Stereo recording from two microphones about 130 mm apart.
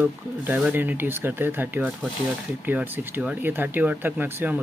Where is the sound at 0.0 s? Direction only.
10° right (ahead or behind).